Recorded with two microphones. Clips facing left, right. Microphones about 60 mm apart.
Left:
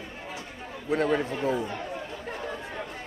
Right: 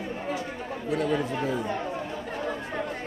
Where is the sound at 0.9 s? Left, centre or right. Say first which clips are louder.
Left 1 dB; left.